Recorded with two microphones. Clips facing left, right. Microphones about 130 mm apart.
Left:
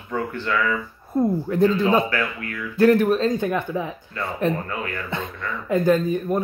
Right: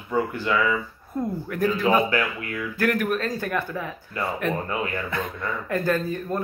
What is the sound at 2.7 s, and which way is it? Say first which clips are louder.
Speech: left 8 dB; 25° left (ahead or behind).